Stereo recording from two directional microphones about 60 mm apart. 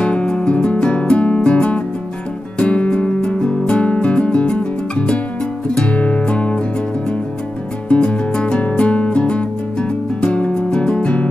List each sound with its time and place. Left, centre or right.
0.0 s music: centre
7.9 s music: centre